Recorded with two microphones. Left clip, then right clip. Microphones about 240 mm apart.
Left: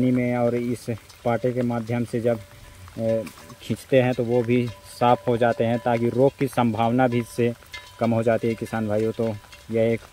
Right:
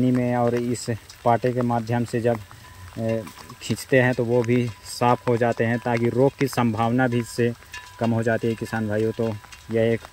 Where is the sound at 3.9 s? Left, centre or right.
Right.